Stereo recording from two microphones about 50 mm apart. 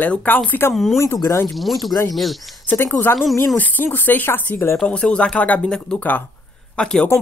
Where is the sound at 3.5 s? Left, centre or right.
Left.